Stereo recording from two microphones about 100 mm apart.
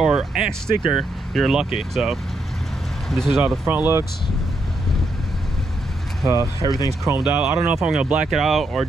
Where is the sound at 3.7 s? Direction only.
20° right (ahead or behind).